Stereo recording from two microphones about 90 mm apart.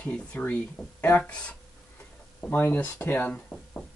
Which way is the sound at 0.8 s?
Centre (ahead or behind).